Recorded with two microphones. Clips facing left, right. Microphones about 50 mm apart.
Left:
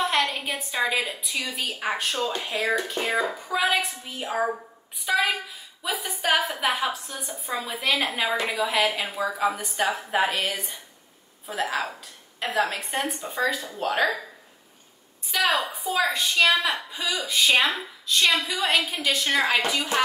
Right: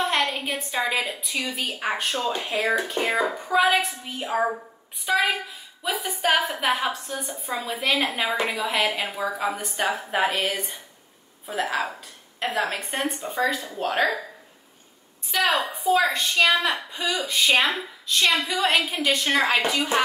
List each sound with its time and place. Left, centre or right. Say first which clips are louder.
0.3 s a woman's voice: right 2 dB; centre
15.3 s a woman's voice: right 1 dB; centre
19.2 s a woman's voice: even; centre